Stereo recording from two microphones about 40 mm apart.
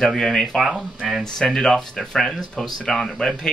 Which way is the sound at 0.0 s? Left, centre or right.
Centre.